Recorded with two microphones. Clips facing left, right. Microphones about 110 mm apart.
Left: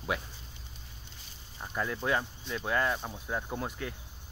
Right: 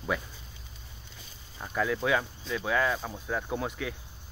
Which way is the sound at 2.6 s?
Centre (ahead or behind).